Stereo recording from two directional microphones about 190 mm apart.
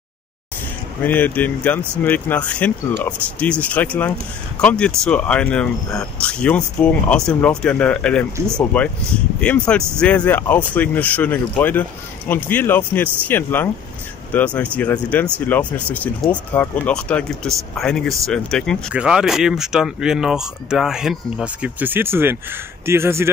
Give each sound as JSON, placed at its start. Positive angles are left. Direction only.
{"t": 1.0, "sound": "speech", "side_deg": 10}